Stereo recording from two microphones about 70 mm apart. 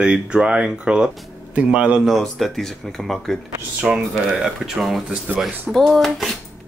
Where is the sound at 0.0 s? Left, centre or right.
Centre.